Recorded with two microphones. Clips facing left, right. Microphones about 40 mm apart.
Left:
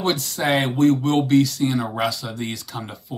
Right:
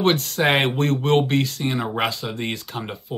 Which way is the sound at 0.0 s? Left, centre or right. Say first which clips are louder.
Right 3 dB; right.